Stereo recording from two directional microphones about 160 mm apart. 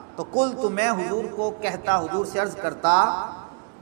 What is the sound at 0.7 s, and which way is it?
A man's voice, 15° right (ahead or behind).